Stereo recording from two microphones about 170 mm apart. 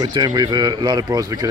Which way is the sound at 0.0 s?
25° right (ahead or behind).